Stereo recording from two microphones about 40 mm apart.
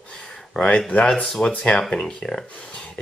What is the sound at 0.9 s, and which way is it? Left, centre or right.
Speech, left.